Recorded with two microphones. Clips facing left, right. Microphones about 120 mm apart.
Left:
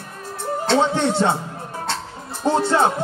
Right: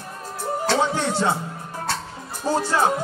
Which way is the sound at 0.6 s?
20° left (ahead or behind).